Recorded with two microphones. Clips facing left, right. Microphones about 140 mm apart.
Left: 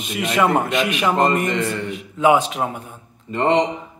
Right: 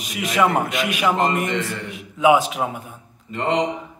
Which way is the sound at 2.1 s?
5° right (ahead or behind).